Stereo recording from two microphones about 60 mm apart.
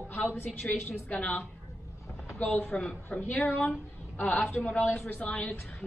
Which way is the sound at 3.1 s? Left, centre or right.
Centre.